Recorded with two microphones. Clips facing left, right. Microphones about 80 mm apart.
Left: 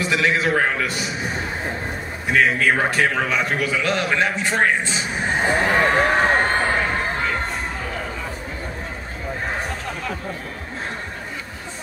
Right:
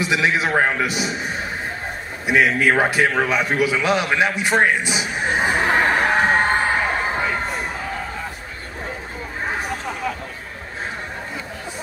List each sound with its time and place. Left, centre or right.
0.0 s a man's voice: centre
2.2 s a man's voice: centre
6.4 s crowd: centre
9.5 s a sound: centre